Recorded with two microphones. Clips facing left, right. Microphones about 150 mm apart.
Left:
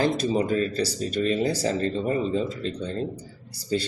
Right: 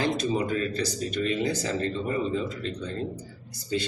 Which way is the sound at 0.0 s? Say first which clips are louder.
Left 3 dB; 35° left (ahead or behind).